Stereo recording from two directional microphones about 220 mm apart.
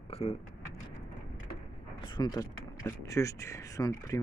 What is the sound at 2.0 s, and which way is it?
Speech, 20° left (ahead or behind).